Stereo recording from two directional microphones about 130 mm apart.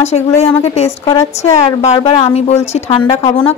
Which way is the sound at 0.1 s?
50° left (ahead or behind).